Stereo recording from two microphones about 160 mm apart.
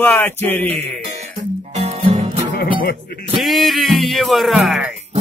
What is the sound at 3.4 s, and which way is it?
Speech, centre (ahead or behind).